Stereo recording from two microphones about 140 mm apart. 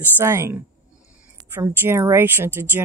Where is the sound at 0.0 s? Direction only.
20° right (ahead or behind).